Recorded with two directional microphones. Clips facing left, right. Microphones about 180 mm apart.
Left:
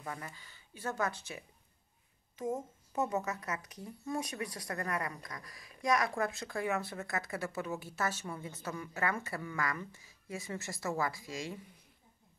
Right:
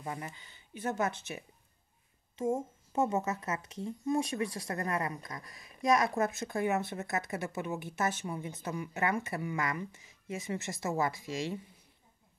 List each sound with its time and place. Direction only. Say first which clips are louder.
0.0 s speech: right 3 dB; 20° right (ahead or behind)